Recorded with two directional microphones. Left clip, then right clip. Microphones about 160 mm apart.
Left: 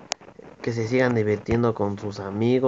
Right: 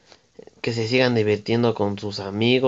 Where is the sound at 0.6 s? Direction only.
30° right (ahead or behind).